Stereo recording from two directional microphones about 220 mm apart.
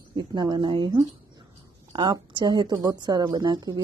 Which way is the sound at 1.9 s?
20° right (ahead or behind).